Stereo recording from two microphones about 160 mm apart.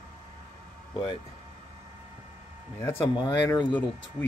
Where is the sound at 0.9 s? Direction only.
30° left (ahead or behind).